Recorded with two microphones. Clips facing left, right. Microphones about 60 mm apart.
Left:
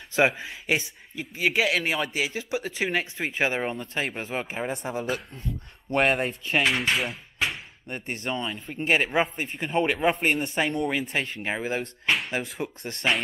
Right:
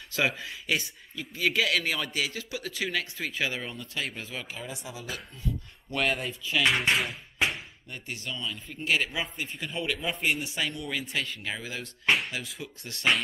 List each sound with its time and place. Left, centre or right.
0.3 s speech: left
6.7 s speech: centre
7.3 s a sound: centre
7.9 s speech: left
10.9 s speech: left